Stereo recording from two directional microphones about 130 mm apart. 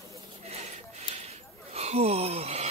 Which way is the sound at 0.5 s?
55° right (ahead or behind).